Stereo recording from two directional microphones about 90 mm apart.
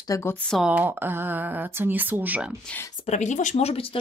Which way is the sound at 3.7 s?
90° left.